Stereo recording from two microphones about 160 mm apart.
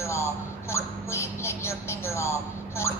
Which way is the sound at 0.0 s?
15° left (ahead or behind).